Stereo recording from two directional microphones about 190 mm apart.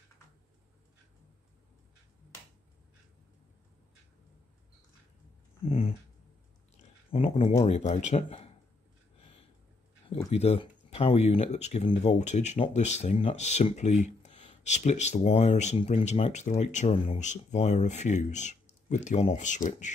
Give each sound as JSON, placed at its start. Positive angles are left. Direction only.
{"t": 5.6, "sound": "a sound", "side_deg": 30}
{"t": 7.1, "sound": "speech", "side_deg": 30}
{"t": 10.0, "sound": "speech", "side_deg": 35}